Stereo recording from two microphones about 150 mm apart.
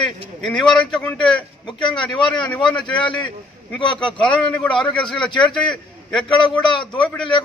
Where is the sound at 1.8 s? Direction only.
30° left (ahead or behind).